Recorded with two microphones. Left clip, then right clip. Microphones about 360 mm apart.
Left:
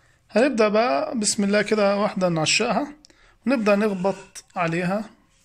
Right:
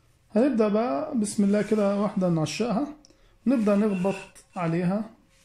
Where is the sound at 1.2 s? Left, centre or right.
Left.